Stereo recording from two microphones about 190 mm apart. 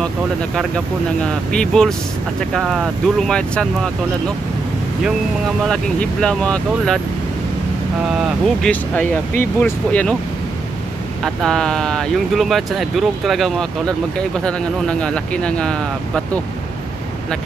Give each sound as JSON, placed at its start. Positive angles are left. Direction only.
{"t": 1.2, "sound": "speech", "side_deg": 5}
{"t": 5.6, "sound": "speech", "side_deg": 5}
{"t": 8.1, "sound": "speech", "side_deg": 0}
{"t": 11.2, "sound": "speech", "side_deg": 5}